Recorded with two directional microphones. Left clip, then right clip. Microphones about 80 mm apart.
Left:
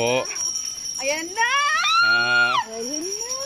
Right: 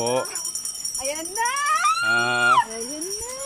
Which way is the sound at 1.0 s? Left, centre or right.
Centre.